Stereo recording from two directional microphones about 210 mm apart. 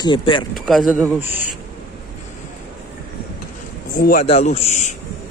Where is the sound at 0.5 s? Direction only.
Centre (ahead or behind).